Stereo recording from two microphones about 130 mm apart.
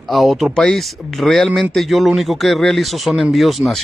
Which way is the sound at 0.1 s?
Centre (ahead or behind).